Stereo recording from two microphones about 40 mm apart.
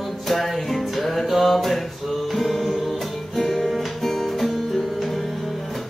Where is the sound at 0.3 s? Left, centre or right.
Centre.